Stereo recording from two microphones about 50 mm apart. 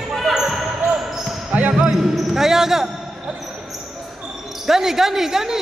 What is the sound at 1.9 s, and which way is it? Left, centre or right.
Speech, centre.